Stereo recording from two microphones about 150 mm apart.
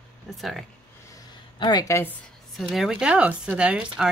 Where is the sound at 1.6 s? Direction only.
30° left (ahead or behind).